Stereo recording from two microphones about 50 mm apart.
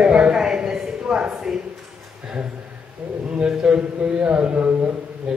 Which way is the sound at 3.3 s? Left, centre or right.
Centre.